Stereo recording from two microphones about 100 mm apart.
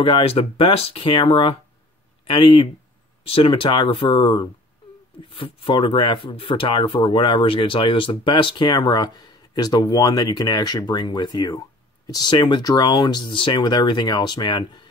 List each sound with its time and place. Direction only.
0.0 s speech: 70° left (ahead or behind); by 2.7 s 55° left (ahead or behind)
3.3 s speech: 65° left (ahead or behind); by 14.9 s 50° left (ahead or behind)